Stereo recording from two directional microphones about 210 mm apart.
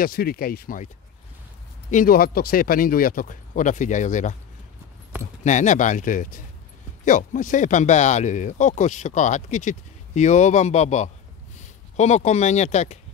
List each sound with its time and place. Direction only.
0.0 s speech: 45° left (ahead or behind)
1.9 s speech: 40° left (ahead or behind)
5.4 s speech: 35° left (ahead or behind)